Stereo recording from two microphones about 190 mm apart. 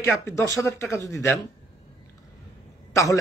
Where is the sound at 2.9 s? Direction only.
15° left (ahead or behind).